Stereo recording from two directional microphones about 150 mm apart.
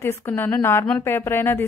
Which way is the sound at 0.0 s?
15° left (ahead or behind).